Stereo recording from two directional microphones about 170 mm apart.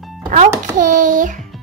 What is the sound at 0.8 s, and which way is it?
Speech, 50° right (ahead or behind).